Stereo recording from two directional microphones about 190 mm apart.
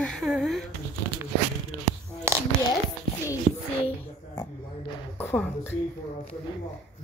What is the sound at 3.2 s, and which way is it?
Speech, 15° left (ahead or behind).